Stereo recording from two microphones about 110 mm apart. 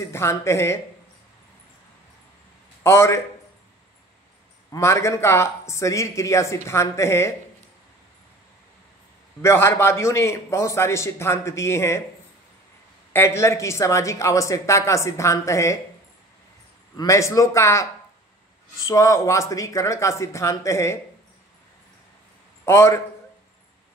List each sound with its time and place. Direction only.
0.0 s speech: 25° left (ahead or behind)
2.8 s speech: 25° left (ahead or behind)
4.6 s speech: 25° left (ahead or behind)
9.4 s speech: 25° left (ahead or behind)
13.1 s speech: 25° left (ahead or behind)
16.9 s speech: 30° left (ahead or behind)
18.9 s speech: 30° left (ahead or behind)
22.7 s speech: 25° left (ahead or behind)